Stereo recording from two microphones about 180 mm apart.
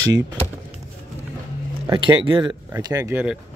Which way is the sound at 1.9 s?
30° right (ahead or behind).